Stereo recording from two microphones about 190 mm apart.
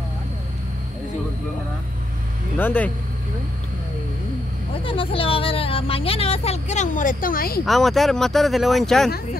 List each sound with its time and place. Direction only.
2.5 s speech: 10° left (ahead or behind)
4.8 s speech: 30° left (ahead or behind); by 7.6 s 50° left (ahead or behind)
7.6 s speech: centre (ahead or behind)